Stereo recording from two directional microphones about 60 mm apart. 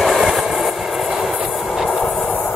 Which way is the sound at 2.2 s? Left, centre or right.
Left.